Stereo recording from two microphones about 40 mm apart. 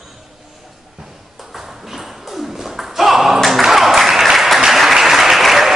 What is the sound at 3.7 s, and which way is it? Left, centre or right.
Applause, centre.